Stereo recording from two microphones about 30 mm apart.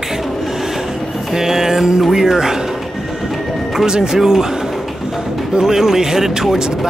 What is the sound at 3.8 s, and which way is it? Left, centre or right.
Speech, right.